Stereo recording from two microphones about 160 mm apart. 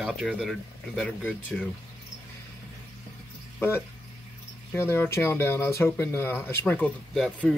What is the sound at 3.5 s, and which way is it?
A man's voice, 15° left (ahead or behind).